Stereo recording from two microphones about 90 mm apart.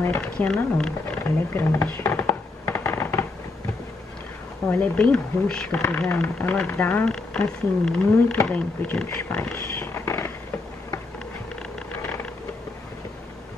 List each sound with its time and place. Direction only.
0.0 s speech: 25° left (ahead or behind)
0.7 s speech: 10° left (ahead or behind)
1.2 s a sound: 25° left (ahead or behind)
4.6 s speech: 15° left (ahead or behind)
7.1 s speech: 10° left (ahead or behind)
9.8 s a sound: 25° left (ahead or behind)